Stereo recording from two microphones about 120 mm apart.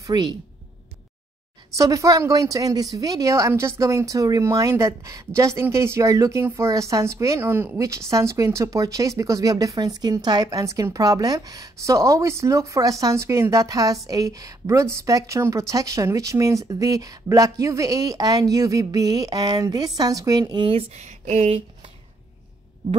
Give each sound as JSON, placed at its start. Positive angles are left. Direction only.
{"t": 0.0, "sound": "a woman's voice", "side_deg": -35}
{"t": 1.8, "sound": "a woman's voice", "side_deg": -30}
{"t": 20.6, "sound": "speech", "side_deg": -55}